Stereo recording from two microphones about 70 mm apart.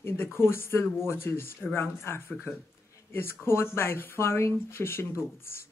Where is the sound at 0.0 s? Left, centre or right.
Left.